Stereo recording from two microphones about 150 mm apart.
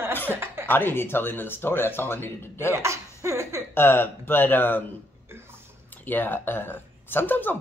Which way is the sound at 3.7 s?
15° left (ahead or behind).